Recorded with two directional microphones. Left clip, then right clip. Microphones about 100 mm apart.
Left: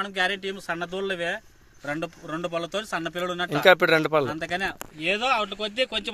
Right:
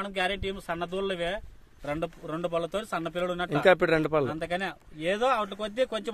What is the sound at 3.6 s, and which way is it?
Speech, 15° right (ahead or behind).